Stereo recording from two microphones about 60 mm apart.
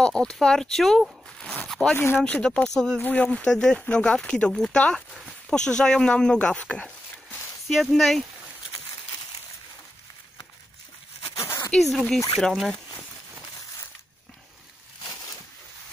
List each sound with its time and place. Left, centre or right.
0.0 s speech: centre
1.7 s zipper: centre
2.1 s speech: left
3.0 s speech: left
7.6 s speech: centre
11.3 s a sound: left
12.4 s speech: centre